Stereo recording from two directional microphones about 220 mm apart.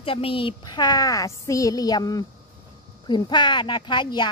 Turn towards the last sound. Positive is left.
turn(degrees=20)  # may be behind; listen again after turning